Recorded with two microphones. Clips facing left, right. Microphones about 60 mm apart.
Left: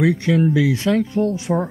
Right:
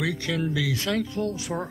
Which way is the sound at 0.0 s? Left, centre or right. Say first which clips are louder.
Left 10 dB; left.